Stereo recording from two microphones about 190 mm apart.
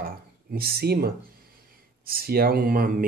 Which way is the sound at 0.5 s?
55° right (ahead or behind).